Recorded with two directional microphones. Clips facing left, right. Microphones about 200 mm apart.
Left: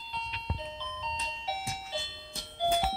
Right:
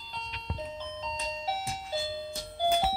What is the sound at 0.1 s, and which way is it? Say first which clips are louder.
Music: left 1 dB; 45° right (ahead or behind).